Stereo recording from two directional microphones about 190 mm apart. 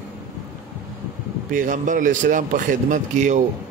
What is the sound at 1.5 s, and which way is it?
A man's voice, 45° right (ahead or behind).